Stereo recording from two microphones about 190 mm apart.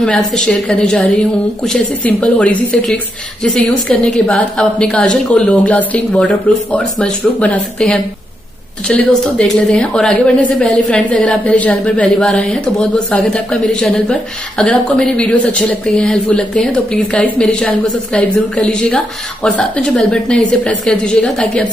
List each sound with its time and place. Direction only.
0.0 s a woman's voice: 5° left (ahead or behind)